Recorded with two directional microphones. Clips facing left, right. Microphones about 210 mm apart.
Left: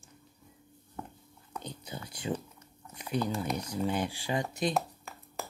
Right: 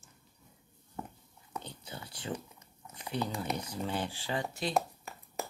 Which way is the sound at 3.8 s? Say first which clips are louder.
Left 4 dB; 15° left (ahead or behind).